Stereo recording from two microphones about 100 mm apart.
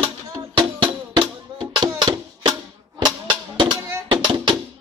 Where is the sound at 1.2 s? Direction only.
50° right (ahead or behind).